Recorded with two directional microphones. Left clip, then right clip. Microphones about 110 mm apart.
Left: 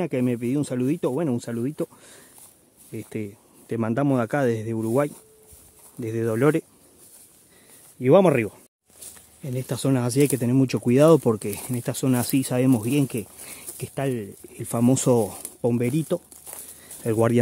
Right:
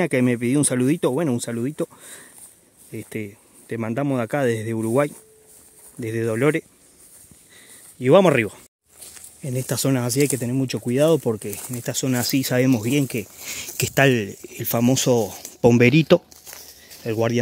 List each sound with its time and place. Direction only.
0.0 s speech: 10° right (ahead or behind)
1.2 s speech: centre (ahead or behind)
3.6 s speech: 25° left (ahead or behind)
4.5 s speech: centre (ahead or behind)
8.0 s speech: 10° left (ahead or behind)
10.0 s speech: 30° left (ahead or behind)
10.5 s speech: 55° left (ahead or behind)
12.1 s speech: 20° left (ahead or behind)
13.6 s speech: 20° right (ahead or behind)
14.5 s speech: centre (ahead or behind)
15.0 s speech: 30° left (ahead or behind)
15.6 s speech: 20° right (ahead or behind)
17.0 s speech: 35° left (ahead or behind)